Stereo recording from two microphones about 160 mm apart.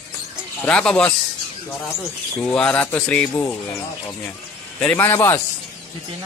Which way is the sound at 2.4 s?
5° left (ahead or behind).